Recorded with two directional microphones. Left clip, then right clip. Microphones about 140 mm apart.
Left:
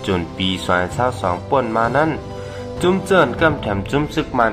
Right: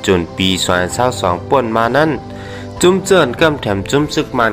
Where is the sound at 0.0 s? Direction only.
35° right (ahead or behind).